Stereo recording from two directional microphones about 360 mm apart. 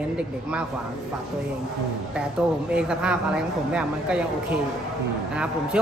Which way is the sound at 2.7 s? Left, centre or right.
Centre.